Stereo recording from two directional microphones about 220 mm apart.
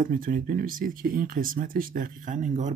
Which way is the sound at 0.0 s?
40° right (ahead or behind).